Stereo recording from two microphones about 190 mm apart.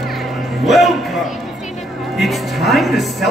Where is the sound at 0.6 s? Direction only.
Centre (ahead or behind).